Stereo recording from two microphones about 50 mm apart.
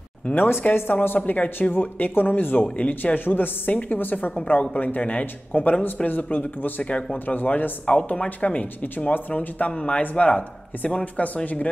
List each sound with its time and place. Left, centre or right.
0.3 s speech: left
6.8 s speech: left
7.2 s speech: left
9.7 s speech: left